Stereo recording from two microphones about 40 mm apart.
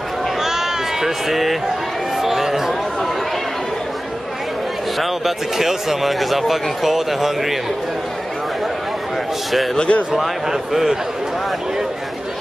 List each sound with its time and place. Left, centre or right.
0.4 s sheep: centre
2.2 s a sound: centre
4.9 s speech: centre
9.8 s speech: left
10.1 s a man's voice: centre